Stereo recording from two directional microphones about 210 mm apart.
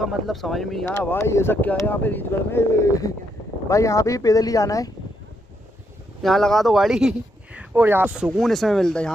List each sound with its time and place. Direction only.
0.0 s speech: centre (ahead or behind); by 4.9 s 15° left (ahead or behind)
6.2 s speech: centre (ahead or behind)